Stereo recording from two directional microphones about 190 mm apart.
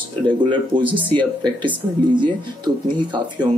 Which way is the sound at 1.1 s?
25° right (ahead or behind).